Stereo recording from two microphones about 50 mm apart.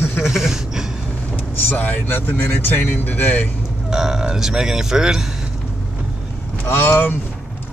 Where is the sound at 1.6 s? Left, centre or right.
Left.